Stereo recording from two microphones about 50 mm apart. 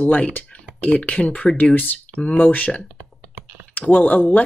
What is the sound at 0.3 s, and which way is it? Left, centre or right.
Speech, left.